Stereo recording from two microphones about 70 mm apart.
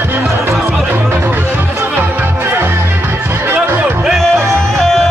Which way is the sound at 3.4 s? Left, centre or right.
Right.